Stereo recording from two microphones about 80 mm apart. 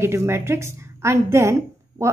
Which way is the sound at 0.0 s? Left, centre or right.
Right.